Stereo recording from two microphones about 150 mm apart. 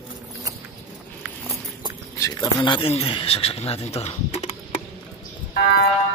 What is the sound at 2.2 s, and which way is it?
Speech, 25° left (ahead or behind).